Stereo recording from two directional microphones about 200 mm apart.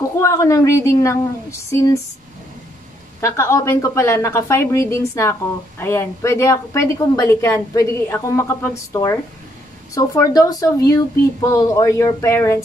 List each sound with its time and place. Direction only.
0.0 s speech: 15° left (ahead or behind)
3.2 s speech: 15° left (ahead or behind)